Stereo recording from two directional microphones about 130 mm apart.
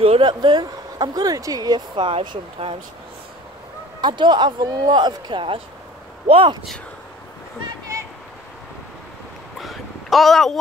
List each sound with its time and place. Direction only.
0.0 s speech: 45° right (ahead or behind)
4.0 s speech: 35° right (ahead or behind)
9.6 s a sound: centre (ahead or behind)